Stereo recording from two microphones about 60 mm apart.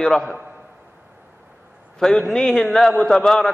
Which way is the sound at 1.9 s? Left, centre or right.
Centre.